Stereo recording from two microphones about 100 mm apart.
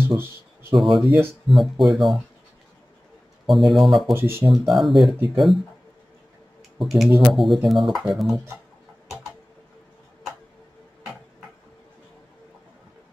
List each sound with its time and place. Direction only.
0.0 s a sound: 25° right (ahead or behind)
0.7 s speech: centre (ahead or behind)
3.4 s speech: centre (ahead or behind)
4.1 s speech: 25° right (ahead or behind)
4.7 s speech: centre (ahead or behind)
6.8 s speech: centre (ahead or behind)
7.1 s speech: 15° right (ahead or behind)
7.3 s speech: centre (ahead or behind)